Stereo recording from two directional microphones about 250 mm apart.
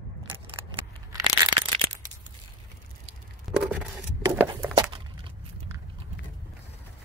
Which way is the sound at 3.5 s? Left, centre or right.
Centre.